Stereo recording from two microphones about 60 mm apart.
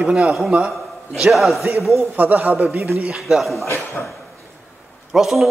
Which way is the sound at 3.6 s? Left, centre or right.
Left.